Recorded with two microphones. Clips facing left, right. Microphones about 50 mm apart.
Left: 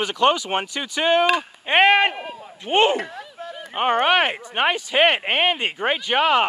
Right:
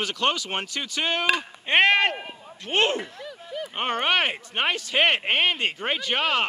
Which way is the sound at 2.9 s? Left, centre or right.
Left.